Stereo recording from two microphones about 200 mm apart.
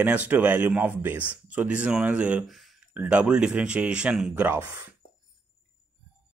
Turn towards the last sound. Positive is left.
turn(degrees=-10)  # may be behind; listen again after turning